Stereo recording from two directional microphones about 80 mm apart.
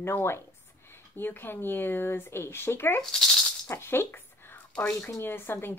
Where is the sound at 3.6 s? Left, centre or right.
Left.